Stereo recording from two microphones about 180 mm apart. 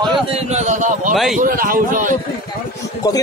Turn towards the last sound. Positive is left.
turn(degrees=20)  # may be behind; listen again after turning